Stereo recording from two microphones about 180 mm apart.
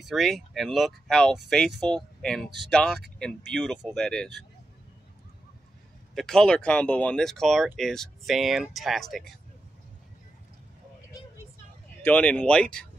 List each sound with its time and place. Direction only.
0.0 s speech: centre (ahead or behind)
6.1 s speech: 5° left (ahead or behind)
12.0 s speech: 5° left (ahead or behind)